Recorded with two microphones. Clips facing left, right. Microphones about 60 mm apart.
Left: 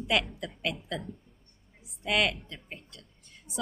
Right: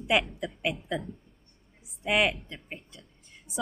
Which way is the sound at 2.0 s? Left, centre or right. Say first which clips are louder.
Right 2 dB; centre.